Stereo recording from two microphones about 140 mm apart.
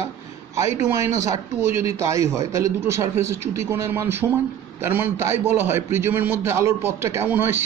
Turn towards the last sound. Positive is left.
turn(degrees=-15)  # may be behind; listen again after turning